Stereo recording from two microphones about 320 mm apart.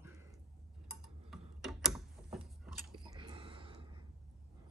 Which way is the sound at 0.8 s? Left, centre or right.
Centre.